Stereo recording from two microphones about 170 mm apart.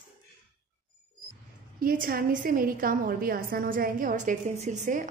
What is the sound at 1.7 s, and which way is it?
A woman's voice, 60° right (ahead or behind).